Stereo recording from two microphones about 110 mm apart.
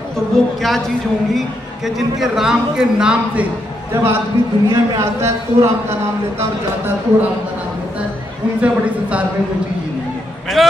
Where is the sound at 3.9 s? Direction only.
25° right (ahead or behind).